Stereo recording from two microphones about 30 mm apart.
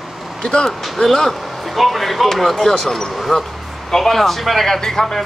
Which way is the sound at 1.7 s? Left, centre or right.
Centre.